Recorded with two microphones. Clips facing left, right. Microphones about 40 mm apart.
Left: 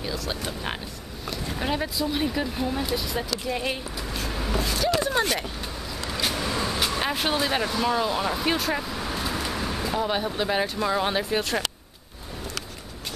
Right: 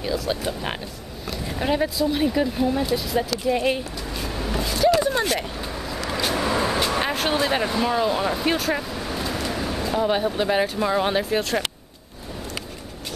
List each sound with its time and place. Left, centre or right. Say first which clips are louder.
0.0 s speech: right 5 dB; centre
6.3 s vehicle: right 5 dB; centre
7.2 s speech: right 3 dB; centre